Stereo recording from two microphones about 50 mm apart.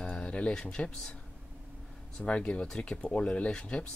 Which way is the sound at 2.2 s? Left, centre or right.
Left.